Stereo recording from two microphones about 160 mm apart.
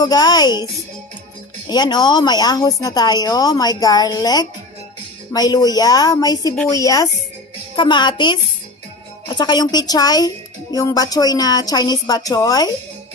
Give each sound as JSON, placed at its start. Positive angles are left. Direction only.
{"t": 0.0, "sound": "a woman's voice", "side_deg": 25}
{"t": 1.7, "sound": "a woman's voice", "side_deg": 25}